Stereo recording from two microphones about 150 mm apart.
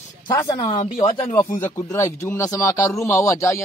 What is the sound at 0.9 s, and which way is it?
Speech, 40° left (ahead or behind).